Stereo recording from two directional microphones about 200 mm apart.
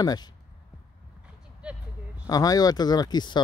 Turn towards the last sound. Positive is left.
turn(degrees=20)  # may be behind; listen again after turning